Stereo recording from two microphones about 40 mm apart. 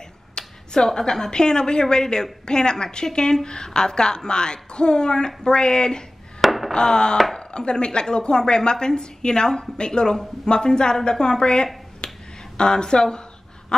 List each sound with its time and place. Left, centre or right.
0.3 s a woman's voice: centre
6.4 s a sound: centre
6.7 s speech: centre